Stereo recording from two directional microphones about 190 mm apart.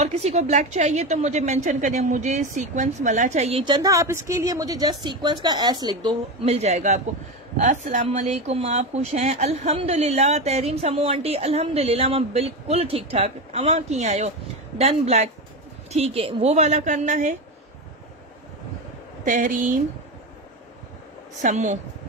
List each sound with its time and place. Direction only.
0.0 s speech: 35° right (ahead or behind)
6.4 s speech: 35° right (ahead or behind)
19.2 s speech: 45° right (ahead or behind)
21.4 s speech: 35° right (ahead or behind)